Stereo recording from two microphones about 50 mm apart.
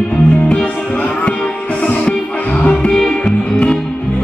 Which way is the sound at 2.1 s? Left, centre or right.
Left.